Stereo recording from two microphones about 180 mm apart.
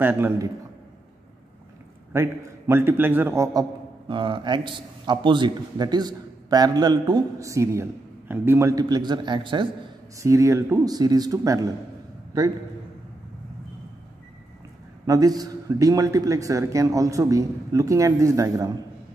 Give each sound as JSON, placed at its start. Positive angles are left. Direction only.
{"t": 0.0, "sound": "a man's voice", "side_deg": -10}
{"t": 2.1, "sound": "a man's voice", "side_deg": -15}
{"t": 4.1, "sound": "a man's voice", "side_deg": -25}
{"t": 15.0, "sound": "a man's voice", "side_deg": -20}